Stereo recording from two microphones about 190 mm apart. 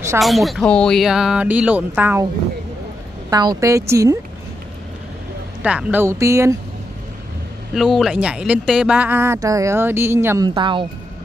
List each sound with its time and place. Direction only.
0.2 s speech: centre (ahead or behind)
3.3 s speech: 20° right (ahead or behind)
5.6 s speech: 5° right (ahead or behind)
7.7 s speech: centre (ahead or behind); by 10.9 s 25° right (ahead or behind)